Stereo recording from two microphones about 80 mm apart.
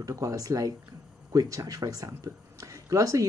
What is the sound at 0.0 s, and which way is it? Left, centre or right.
Speech, right.